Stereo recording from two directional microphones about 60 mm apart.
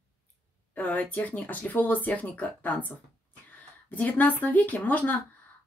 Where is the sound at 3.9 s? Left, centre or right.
Left.